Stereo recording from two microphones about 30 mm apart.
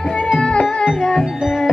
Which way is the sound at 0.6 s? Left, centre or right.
Left.